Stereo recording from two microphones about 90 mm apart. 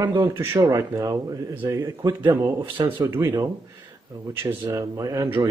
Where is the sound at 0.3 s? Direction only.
25° right (ahead or behind).